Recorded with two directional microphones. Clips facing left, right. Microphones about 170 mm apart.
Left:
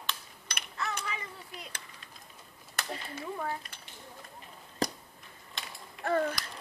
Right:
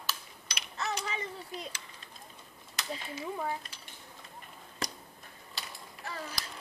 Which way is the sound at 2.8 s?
55° left (ahead or behind).